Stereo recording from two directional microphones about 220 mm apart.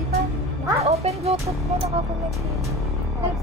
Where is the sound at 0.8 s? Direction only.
30° right (ahead or behind).